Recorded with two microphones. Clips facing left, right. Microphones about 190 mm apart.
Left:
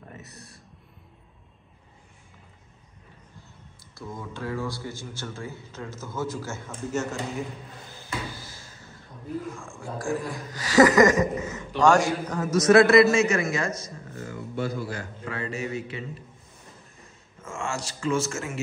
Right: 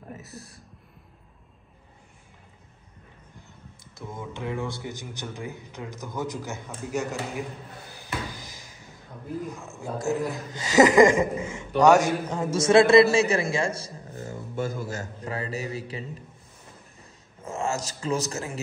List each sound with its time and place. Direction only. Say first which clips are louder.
0.1 s a sound: right 4 dB; centre (ahead or behind)
3.9 s a man's voice: even; 20° right (ahead or behind)
7.9 s a sound: even; 15° right (ahead or behind)
9.7 s a man's voice: right 3 dB; 20° right (ahead or behind)
14.5 s a man's voice: even; 50° right (ahead or behind)
17.4 s a man's voice: right 3 dB; 35° right (ahead or behind)